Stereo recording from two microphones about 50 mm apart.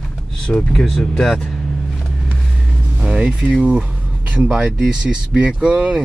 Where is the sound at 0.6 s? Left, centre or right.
Centre.